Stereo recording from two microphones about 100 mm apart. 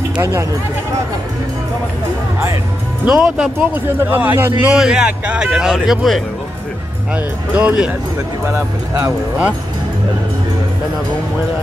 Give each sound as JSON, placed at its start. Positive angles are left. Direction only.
{"t": 0.2, "sound": "a man's voice", "side_deg": -25}
{"t": 3.1, "sound": "speech", "side_deg": -5}
{"t": 3.7, "sound": "a man's voice", "side_deg": -20}
{"t": 4.6, "sound": "speech", "side_deg": -10}
{"t": 7.2, "sound": "speech", "side_deg": -15}
{"t": 8.5, "sound": "a man's voice", "side_deg": -30}